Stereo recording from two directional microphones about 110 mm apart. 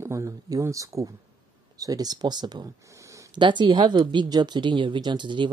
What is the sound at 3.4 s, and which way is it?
Speech, 45° right (ahead or behind).